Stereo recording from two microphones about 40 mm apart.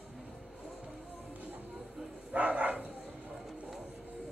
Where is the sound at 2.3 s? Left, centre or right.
Right.